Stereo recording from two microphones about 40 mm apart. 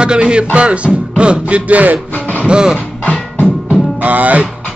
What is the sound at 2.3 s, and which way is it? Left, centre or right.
Music, right.